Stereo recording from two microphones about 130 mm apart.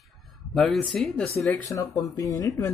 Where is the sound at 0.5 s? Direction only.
Centre (ahead or behind).